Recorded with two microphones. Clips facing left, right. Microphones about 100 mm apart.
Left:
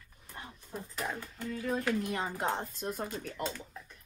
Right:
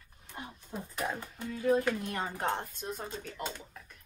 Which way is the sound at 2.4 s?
15° left (ahead or behind).